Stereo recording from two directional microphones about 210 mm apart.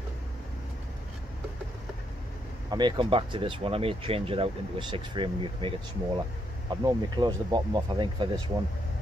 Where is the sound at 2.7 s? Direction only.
20° right (ahead or behind).